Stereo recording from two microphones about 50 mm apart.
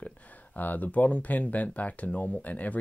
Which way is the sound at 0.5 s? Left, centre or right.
Left.